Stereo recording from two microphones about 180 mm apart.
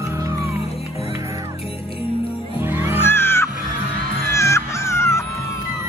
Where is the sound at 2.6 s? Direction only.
10° right (ahead or behind).